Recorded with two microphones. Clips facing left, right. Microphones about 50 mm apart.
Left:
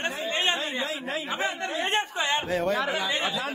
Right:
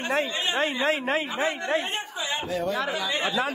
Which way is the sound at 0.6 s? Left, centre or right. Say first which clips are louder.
Right 6 dB; right.